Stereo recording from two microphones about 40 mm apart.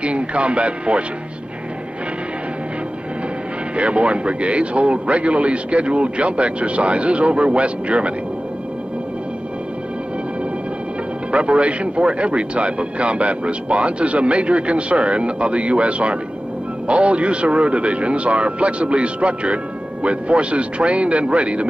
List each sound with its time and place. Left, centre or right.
0.0 s speech: right
3.7 s speech: right
11.3 s speech: right